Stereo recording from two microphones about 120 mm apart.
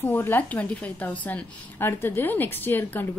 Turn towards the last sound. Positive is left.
turn(degrees=15)  # may be behind; listen again after turning